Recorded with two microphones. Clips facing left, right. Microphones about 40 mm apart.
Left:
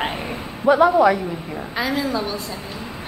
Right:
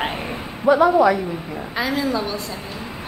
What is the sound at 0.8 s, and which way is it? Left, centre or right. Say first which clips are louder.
Speech: left 1 dB; left.